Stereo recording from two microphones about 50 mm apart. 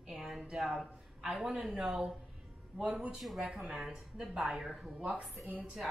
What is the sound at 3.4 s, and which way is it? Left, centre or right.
Speech, centre.